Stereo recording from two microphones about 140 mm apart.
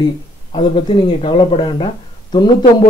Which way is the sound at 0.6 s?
35° left (ahead or behind).